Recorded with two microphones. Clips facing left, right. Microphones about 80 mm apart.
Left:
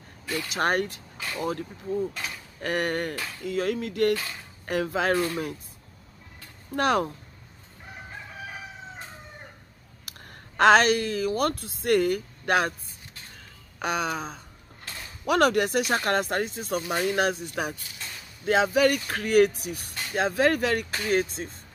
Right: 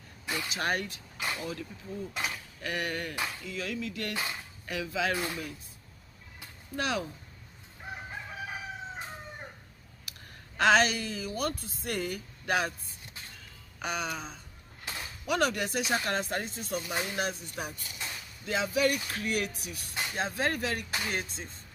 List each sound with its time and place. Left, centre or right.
0.5 s speech: left
4.1 s speech: centre
4.6 s speech: left
6.7 s speech: left
10.6 s speech: left
13.7 s speech: left
14.9 s a sound: centre
15.2 s speech: left